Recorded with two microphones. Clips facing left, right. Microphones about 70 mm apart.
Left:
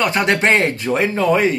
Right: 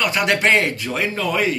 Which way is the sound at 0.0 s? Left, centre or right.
Left.